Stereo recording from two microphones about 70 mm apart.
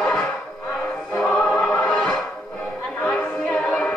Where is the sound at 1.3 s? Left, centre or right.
Centre.